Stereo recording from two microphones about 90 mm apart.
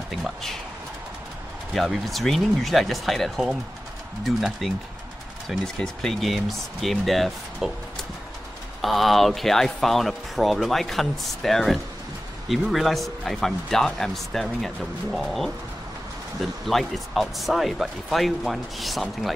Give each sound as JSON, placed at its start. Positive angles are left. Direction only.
{"t": 0.1, "sound": "a sound", "side_deg": 5}
{"t": 1.7, "sound": "speech", "side_deg": 0}
{"t": 5.8, "sound": "speech", "side_deg": 5}
{"t": 8.8, "sound": "speech", "side_deg": 0}